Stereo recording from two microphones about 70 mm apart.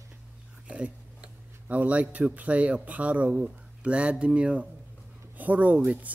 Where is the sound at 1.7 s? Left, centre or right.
Right.